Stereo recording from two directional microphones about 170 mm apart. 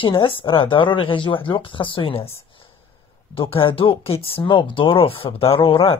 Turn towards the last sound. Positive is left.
turn(degrees=30)  # may be behind; listen again after turning